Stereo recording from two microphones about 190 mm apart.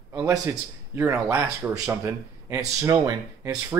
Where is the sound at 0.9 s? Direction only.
10° right (ahead or behind).